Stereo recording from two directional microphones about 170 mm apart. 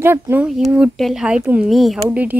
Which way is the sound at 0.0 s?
15° right (ahead or behind).